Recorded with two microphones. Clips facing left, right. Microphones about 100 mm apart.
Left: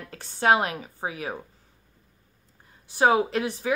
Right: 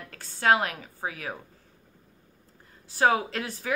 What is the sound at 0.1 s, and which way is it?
A woman's voice, 20° left (ahead or behind).